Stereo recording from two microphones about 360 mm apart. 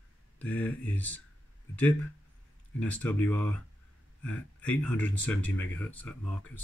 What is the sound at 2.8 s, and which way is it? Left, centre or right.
Speech, centre.